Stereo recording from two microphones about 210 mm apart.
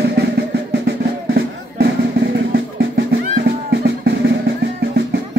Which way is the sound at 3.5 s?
50° right (ahead or behind).